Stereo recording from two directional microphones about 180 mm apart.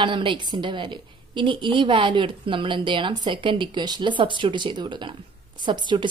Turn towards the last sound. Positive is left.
turn(degrees=-25)  # may be behind; listen again after turning